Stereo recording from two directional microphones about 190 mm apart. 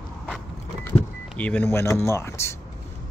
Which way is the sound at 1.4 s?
10° left (ahead or behind).